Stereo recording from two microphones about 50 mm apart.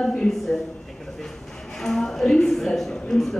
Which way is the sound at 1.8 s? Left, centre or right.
Centre.